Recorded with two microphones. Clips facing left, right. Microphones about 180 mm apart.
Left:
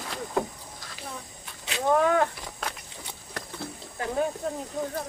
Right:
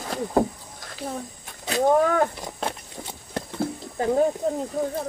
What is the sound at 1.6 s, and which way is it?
Wild animals, 40° right (ahead or behind).